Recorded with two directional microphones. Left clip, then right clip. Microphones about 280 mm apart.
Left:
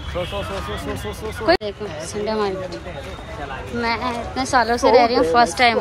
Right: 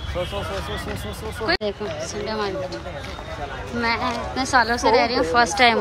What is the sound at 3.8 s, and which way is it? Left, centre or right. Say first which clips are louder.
A woman's voice: even; centre.